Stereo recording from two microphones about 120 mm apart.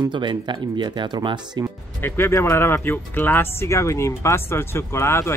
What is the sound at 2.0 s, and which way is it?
Speech, 20° left (ahead or behind).